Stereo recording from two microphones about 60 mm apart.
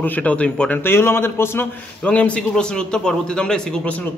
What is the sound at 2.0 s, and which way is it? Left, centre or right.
A man's voice, left.